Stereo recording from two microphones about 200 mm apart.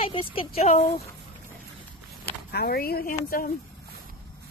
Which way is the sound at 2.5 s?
50° left (ahead or behind).